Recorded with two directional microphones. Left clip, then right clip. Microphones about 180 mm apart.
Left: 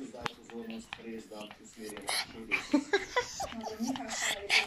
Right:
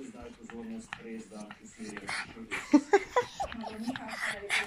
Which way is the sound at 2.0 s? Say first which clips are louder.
Left 2 dB; 15° left (ahead or behind).